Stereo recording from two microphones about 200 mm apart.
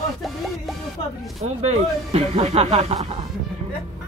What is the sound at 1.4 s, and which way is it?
Speech, 30° right (ahead or behind).